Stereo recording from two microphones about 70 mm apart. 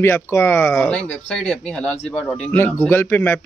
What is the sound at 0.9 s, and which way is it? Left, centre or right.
Speech, centre.